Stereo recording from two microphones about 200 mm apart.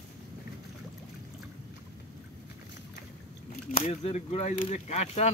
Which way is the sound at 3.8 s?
30° left (ahead or behind).